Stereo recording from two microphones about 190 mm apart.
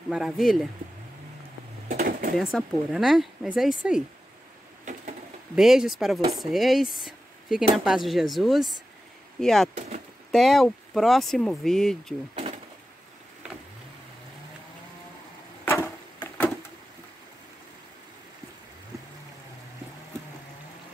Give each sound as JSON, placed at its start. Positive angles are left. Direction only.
{"t": 0.1, "sound": "speech", "side_deg": 0}
{"t": 1.9, "sound": "speech", "side_deg": -50}
{"t": 2.3, "sound": "speech", "side_deg": 0}
{"t": 5.6, "sound": "speech", "side_deg": 0}
{"t": 9.8, "sound": "speech", "side_deg": -35}
{"t": 10.3, "sound": "speech", "side_deg": 0}
{"t": 15.6, "sound": "wood", "side_deg": 10}